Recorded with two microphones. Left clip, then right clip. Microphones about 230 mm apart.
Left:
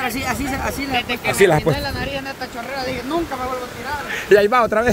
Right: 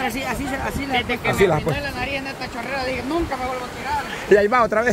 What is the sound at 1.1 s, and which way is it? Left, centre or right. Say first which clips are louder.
Speech: left 4 dB; left.